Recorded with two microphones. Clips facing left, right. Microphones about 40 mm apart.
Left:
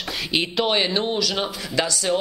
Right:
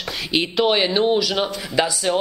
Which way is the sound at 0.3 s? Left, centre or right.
Centre.